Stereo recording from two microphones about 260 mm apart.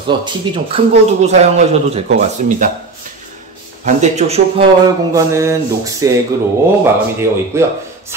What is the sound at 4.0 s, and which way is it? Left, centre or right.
Speech, right.